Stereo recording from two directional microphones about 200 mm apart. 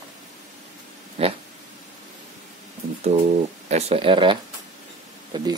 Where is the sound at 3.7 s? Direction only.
30° right (ahead or behind).